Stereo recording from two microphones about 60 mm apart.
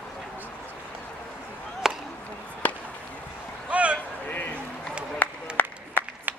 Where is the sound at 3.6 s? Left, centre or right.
Right.